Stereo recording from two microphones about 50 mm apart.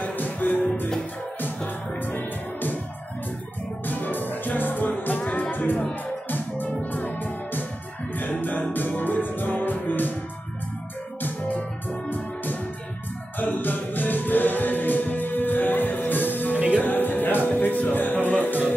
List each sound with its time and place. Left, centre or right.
0.0 s music: left
2.0 s music: left
3.8 s music: left
11.2 s music: left
13.4 s music: left
16.5 s music: right
16.8 s music: left